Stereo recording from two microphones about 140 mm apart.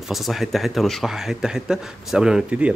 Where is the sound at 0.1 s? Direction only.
Centre (ahead or behind).